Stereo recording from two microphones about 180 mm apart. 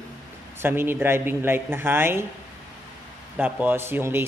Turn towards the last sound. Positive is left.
turn(degrees=-10)  # may be behind; listen again after turning